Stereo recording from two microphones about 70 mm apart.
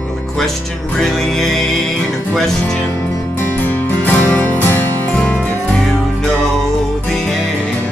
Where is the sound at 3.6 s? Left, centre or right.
Left.